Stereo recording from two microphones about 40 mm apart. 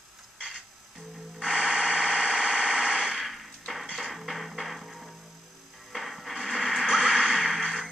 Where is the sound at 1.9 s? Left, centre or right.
Centre.